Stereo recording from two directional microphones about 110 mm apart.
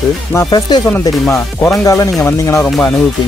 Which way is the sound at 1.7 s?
30° left (ahead or behind).